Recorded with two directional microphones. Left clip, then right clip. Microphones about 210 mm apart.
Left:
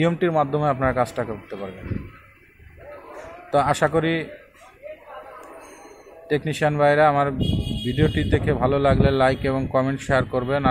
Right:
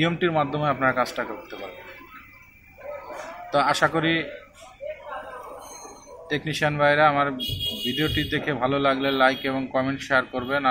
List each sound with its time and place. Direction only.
0.0 s speech: 20° left (ahead or behind)
3.5 s speech: 20° left (ahead or behind)
6.2 s speech: 25° left (ahead or behind)